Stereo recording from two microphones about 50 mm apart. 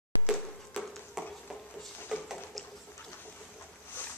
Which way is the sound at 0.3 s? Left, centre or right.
Centre.